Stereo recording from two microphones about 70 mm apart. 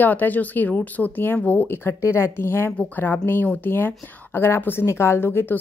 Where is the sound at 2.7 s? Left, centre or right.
Left.